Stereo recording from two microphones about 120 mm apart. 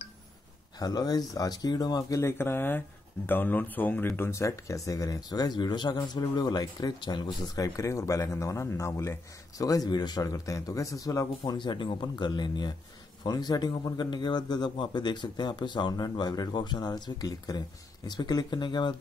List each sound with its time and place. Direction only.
0.7 s speech: 35° left (ahead or behind)